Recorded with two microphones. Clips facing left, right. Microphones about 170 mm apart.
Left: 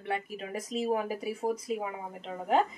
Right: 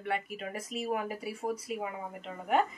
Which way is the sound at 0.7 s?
30° left (ahead or behind).